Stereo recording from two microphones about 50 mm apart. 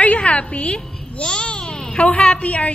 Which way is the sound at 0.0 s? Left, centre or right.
Left.